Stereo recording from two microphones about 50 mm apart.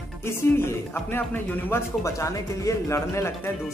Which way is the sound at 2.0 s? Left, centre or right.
Left.